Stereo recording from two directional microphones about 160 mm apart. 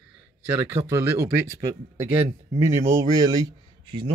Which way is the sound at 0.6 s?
15° right (ahead or behind).